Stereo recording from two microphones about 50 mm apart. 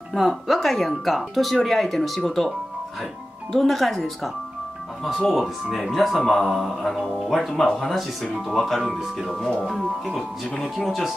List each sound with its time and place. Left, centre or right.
0.1 s a man's voice: centre
3.5 s a man's voice: centre